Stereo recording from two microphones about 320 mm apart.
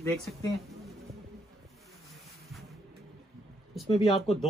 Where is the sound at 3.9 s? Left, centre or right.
Centre.